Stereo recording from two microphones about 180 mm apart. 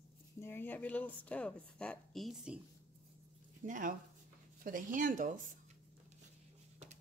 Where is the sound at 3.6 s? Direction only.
50° right (ahead or behind).